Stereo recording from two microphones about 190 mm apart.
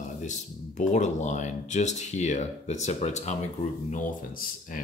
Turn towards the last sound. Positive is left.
turn(degrees=45)  # may be behind; listen again after turning